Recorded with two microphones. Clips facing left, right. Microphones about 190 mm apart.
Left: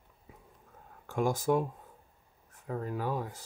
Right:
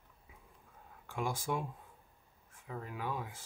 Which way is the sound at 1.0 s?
40° left (ahead or behind).